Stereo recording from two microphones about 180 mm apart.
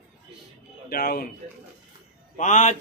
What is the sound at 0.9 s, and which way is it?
Speech, 55° left (ahead or behind).